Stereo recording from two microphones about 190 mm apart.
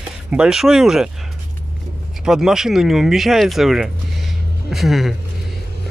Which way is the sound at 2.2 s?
5° right (ahead or behind).